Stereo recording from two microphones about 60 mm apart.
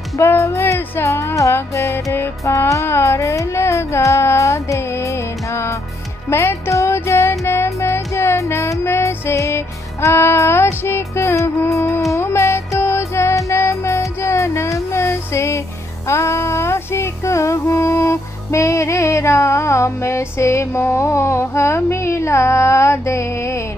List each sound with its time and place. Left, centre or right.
0.4 s speech: left
1.5 s music: left
2.9 s a sound: left
6.3 s music: left
6.9 s child singing: left
8.4 s music: left
10.1 s music: left
14.9 s a sound: left
16.1 s music: left